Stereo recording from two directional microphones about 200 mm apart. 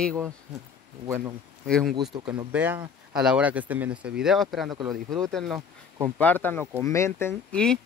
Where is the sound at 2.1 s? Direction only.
25° right (ahead or behind).